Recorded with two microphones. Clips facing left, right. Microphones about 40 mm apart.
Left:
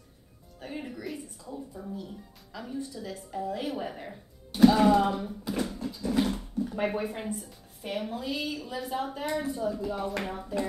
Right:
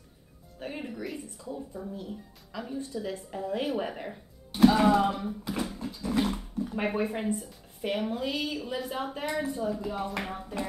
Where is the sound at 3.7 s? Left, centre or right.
Centre.